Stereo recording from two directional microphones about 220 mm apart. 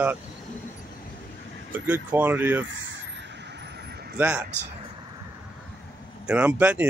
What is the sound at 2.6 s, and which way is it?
Speech, 55° right (ahead or behind).